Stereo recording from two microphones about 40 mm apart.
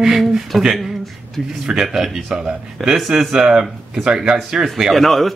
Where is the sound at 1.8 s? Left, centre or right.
Centre.